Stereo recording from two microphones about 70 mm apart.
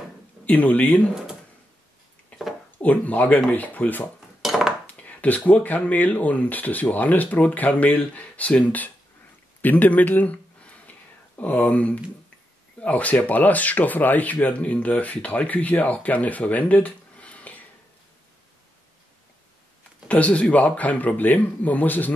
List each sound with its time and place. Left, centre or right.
0.5 s speech: left
2.3 s a sound: left
2.8 s speech: left
4.4 s cutlery: centre
4.8 s speech: left
9.6 s a sound: left
12.8 s speech: left
20.1 s speech: centre